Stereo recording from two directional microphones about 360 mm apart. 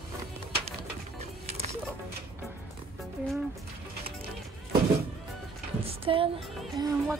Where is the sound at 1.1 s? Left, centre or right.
Centre.